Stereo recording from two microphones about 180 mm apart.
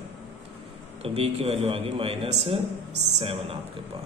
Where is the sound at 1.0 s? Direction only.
35° right (ahead or behind).